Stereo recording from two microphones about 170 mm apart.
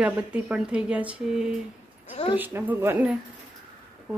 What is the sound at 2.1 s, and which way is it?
Speech, 35° left (ahead or behind).